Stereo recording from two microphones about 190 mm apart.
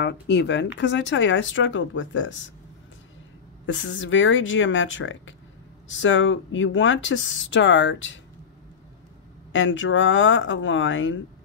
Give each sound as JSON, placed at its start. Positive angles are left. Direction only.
{"t": 0.0, "sound": "speech", "side_deg": 65}
{"t": 3.6, "sound": "speech", "side_deg": 80}
{"t": 9.5, "sound": "speech", "side_deg": 90}